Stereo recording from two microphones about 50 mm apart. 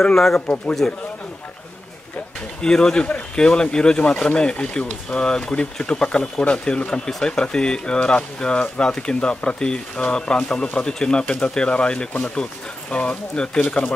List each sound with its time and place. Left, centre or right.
0.0 s speech: centre
0.8 s speech: centre
2.6 s speech: centre